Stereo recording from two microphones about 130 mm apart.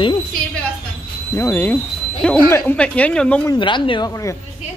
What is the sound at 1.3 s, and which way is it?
Speech, 15° left (ahead or behind).